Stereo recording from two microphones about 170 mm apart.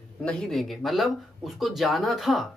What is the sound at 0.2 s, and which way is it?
Speech, 5° left (ahead or behind).